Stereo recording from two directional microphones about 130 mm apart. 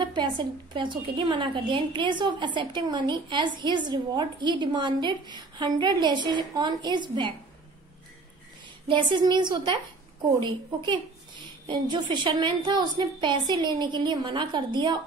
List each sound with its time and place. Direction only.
0.0 s a woman's voice: 35° right (ahead or behind)
8.8 s a woman's voice: 40° right (ahead or behind)